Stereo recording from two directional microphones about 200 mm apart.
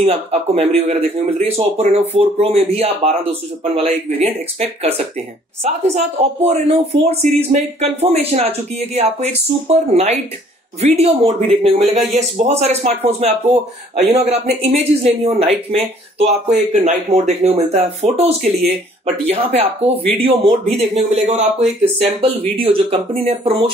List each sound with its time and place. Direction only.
0.0 s speech: 30° right (ahead or behind)